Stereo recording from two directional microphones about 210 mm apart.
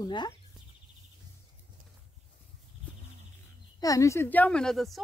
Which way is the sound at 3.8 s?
15° left (ahead or behind).